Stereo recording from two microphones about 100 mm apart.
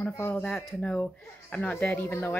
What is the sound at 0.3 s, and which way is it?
Speech, 15° left (ahead or behind).